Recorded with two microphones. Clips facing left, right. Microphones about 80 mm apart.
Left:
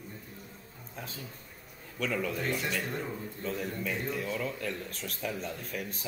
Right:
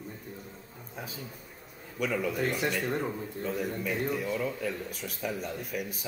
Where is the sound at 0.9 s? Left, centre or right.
Centre.